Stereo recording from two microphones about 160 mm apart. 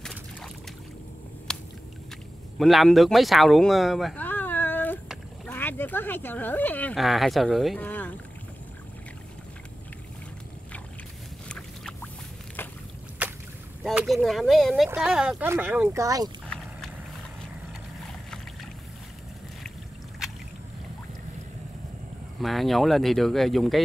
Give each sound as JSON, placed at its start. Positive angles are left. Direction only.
{"t": 0.0, "sound": "boat", "side_deg": 5}
{"t": 1.5, "sound": "biting", "side_deg": 5}
{"t": 2.6, "sound": "speech", "side_deg": 0}
{"t": 7.0, "sound": "speech", "side_deg": 0}
{"t": 11.4, "sound": "rodents", "side_deg": 5}
{"t": 13.2, "sound": "a sound", "side_deg": -10}
{"t": 13.8, "sound": "speech", "side_deg": 0}
{"t": 22.4, "sound": "speech", "side_deg": 0}